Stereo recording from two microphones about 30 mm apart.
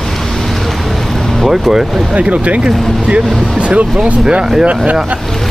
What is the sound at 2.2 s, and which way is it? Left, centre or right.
Speech, right.